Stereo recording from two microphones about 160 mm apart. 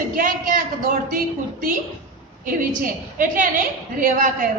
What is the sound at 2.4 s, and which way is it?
A woman's voice, 60° right (ahead or behind).